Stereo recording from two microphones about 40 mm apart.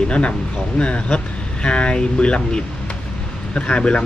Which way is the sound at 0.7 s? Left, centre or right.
Left.